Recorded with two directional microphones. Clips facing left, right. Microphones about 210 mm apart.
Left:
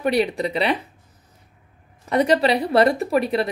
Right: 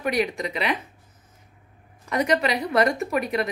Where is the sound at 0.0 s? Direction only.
30° left (ahead or behind).